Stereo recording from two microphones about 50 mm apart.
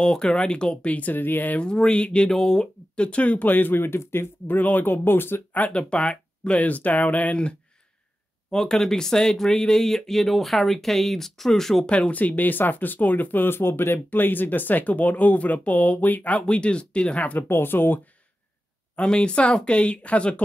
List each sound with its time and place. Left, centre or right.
0.0 s speech: centre
0.9 s speech: left
1.6 s speech: centre; by 4.3 s left
4.5 s speech: left
5.7 s speech: left
8.5 s speech: centre
11.9 s speech: left
17.4 s speech: left
18.9 s speech: centre